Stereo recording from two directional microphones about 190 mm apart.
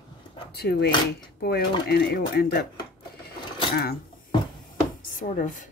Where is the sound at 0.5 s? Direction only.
60° left (ahead or behind).